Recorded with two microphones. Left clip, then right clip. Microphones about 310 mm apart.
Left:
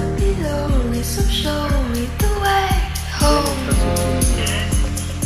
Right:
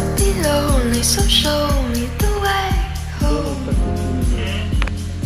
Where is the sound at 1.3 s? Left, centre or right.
Centre.